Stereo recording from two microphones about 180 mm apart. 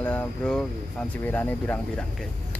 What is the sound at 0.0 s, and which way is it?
Speech, 10° left (ahead or behind).